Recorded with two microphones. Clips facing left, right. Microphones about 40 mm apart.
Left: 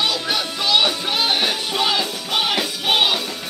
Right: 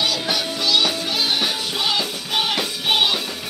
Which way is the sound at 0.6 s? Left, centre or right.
Left.